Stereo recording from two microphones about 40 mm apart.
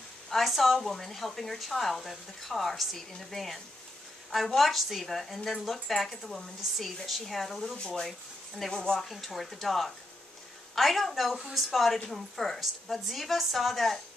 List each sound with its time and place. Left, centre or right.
0.3 s speech: centre
9.1 s speech: centre